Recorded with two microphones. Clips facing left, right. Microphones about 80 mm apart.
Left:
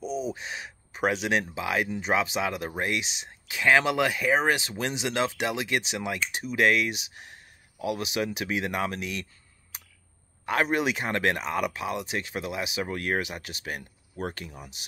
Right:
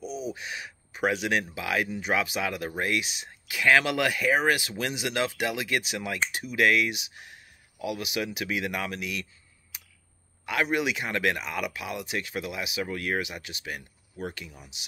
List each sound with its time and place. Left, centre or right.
0.0 s speech: left